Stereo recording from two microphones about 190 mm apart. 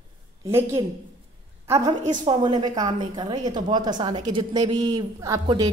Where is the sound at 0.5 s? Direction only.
10° right (ahead or behind).